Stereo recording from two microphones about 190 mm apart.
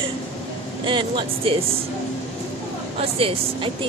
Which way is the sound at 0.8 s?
25° right (ahead or behind).